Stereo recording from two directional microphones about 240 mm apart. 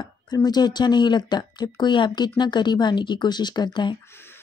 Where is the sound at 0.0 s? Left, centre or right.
Centre.